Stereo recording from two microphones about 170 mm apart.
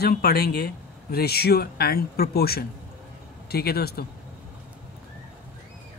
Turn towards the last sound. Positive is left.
turn(degrees=65)  # may be behind; listen again after turning